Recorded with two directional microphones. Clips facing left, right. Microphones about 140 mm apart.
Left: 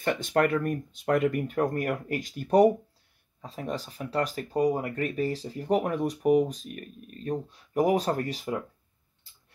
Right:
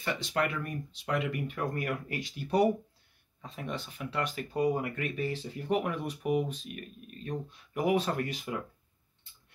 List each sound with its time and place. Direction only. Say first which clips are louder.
0.0 s speech: left 6 dB; 50° left (ahead or behind)